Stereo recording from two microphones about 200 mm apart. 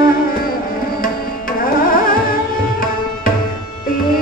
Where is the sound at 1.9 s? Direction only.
45° left (ahead or behind).